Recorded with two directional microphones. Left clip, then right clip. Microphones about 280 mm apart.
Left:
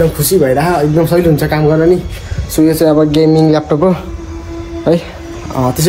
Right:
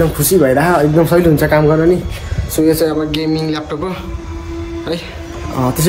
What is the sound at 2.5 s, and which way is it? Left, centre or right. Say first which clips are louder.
Speech: left 2 dB; left.